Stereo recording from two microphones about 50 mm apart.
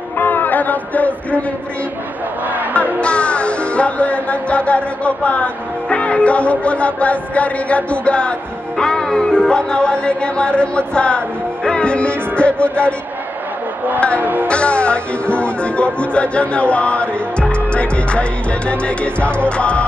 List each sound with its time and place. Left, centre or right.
0.2 s a sound: left
3.0 s music: left
13.9 s music: left
14.2 s music: right
14.5 s music: left